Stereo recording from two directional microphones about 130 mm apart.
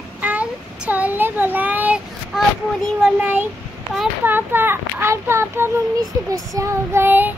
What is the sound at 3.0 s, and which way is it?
Child singing, 10° right (ahead or behind).